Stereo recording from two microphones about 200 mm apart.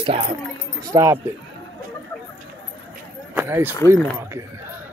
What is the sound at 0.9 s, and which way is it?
Speech, 15° right (ahead or behind).